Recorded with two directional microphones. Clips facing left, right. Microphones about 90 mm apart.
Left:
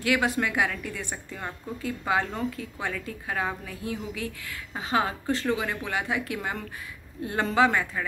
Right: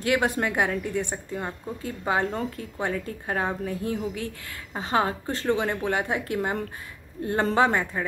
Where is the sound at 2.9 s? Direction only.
35° right (ahead or behind).